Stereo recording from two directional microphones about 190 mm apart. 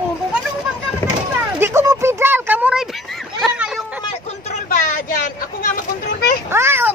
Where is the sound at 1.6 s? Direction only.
10° right (ahead or behind).